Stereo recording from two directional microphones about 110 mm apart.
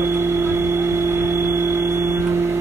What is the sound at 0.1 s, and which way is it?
Vehicle, 20° right (ahead or behind).